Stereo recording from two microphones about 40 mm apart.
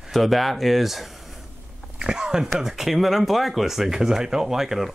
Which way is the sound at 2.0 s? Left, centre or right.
Centre.